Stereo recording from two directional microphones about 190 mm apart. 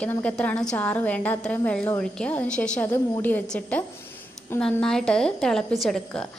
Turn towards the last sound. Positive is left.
turn(degrees=0)  # may be behind; listen again after turning